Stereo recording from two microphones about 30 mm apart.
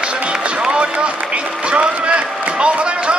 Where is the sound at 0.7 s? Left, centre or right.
Right.